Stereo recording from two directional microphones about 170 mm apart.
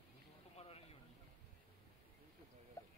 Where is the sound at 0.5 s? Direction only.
35° left (ahead or behind).